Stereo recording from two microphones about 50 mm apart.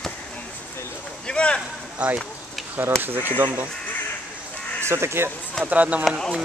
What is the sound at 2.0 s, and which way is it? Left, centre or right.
Speech, right.